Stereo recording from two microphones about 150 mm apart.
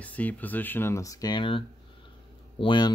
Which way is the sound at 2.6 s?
30° left (ahead or behind).